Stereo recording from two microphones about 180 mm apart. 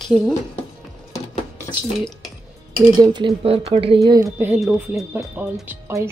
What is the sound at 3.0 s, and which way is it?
Speech, 25° right (ahead or behind).